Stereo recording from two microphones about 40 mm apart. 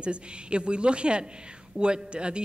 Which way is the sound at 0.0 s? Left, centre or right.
Right.